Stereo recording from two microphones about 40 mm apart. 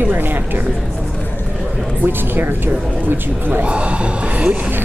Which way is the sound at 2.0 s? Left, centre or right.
Right.